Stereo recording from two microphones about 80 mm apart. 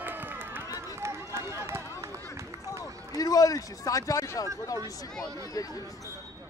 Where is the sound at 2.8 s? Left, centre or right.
Left.